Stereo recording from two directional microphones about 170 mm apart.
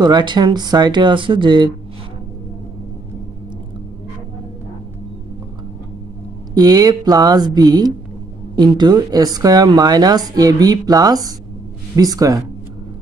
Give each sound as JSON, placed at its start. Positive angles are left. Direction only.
{"t": 0.0, "sound": "speech", "side_deg": -25}
{"t": 6.5, "sound": "speech", "side_deg": -20}